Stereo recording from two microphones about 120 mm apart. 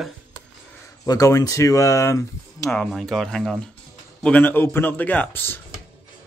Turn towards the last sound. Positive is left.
turn(degrees=15)  # may be behind; listen again after turning